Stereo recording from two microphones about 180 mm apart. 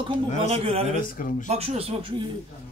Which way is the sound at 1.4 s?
35° right (ahead or behind).